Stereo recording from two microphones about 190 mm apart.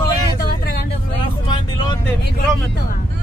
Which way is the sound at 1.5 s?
20° left (ahead or behind).